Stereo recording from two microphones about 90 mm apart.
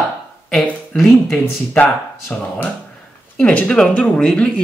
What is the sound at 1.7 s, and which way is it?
Speech, 15° left (ahead or behind).